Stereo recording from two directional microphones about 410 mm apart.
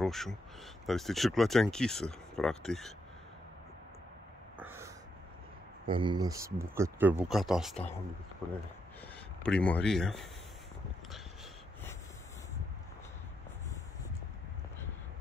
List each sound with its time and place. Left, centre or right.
0.0 s speech: centre
4.6 s a sound: centre
5.9 s speech: centre
9.4 s speech: centre